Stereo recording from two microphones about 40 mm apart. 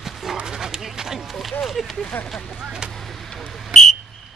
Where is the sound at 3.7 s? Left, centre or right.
Centre.